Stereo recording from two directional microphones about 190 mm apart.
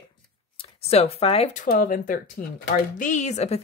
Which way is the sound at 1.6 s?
45° left (ahead or behind).